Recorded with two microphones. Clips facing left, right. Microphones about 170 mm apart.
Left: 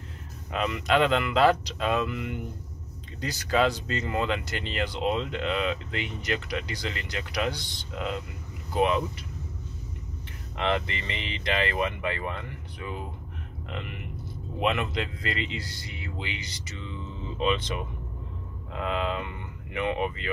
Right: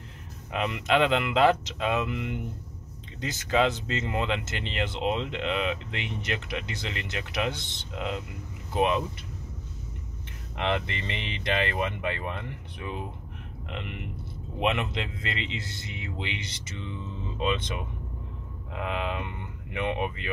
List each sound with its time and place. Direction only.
0.5 s speech: 20° right (ahead or behind)
11.1 s speech: 20° right (ahead or behind)
14.6 s speech: 25° right (ahead or behind)